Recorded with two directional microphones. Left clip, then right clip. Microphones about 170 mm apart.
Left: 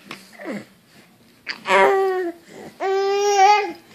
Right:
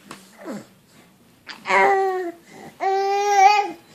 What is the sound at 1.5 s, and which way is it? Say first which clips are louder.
Baby cry: left 1 dB; 5° left (ahead or behind).